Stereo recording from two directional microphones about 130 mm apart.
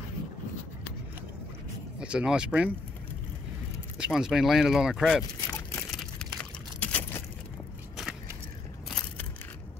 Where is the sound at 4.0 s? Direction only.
5° right (ahead or behind).